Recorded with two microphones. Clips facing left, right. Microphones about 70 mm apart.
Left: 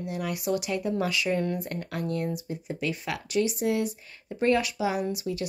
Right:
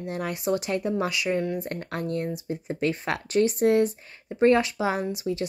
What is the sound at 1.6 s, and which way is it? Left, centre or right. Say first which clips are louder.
Speech: right 1 dB; right.